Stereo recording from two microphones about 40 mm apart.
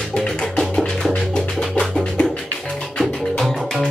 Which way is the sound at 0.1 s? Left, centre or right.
Centre.